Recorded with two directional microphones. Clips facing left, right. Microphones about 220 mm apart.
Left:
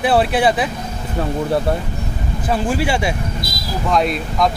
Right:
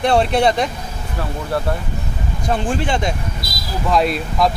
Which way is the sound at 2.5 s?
10° left (ahead or behind).